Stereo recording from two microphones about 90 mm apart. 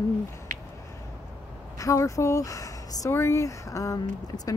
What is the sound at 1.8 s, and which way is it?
Speech, 35° left (ahead or behind).